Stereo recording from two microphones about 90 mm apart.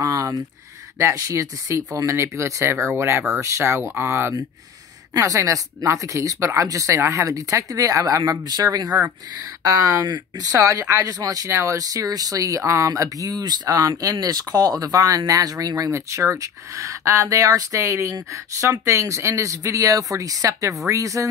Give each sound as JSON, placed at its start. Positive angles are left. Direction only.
{"t": 0.0, "sound": "a sound", "side_deg": -40}
{"t": 0.9, "sound": "speech", "side_deg": -35}
{"t": 10.0, "sound": "speech", "side_deg": -55}
{"t": 10.6, "sound": "speech", "side_deg": -35}